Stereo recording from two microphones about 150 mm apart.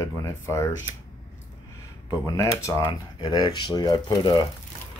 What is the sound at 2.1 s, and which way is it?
Speech, 20° left (ahead or behind).